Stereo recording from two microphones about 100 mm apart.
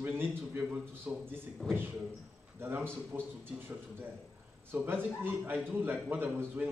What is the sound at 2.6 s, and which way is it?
A man's voice, 20° right (ahead or behind).